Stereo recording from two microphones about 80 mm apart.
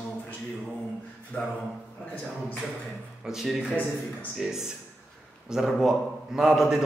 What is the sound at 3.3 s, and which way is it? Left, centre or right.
A man's voice, centre.